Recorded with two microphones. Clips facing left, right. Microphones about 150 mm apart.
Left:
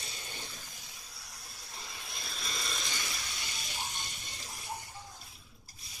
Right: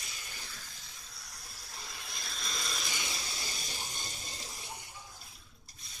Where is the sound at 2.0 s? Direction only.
Centre (ahead or behind).